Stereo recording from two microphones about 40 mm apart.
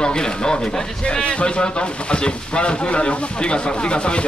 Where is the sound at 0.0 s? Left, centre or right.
Centre.